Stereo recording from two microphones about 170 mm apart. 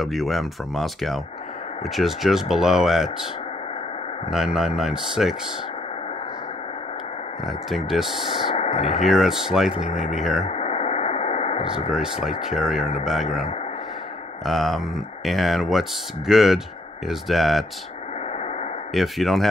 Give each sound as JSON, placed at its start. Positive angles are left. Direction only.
{"t": 0.0, "sound": "speech", "side_deg": 0}
{"t": 4.3, "sound": "speech", "side_deg": -5}
{"t": 7.4, "sound": "speech", "side_deg": 0}
{"t": 8.5, "sound": "speech", "side_deg": 35}
{"t": 9.0, "sound": "speech", "side_deg": 0}
{"t": 10.4, "sound": "radio", "side_deg": 35}
{"t": 11.9, "sound": "speech", "side_deg": -5}
{"t": 18.9, "sound": "speech", "side_deg": 0}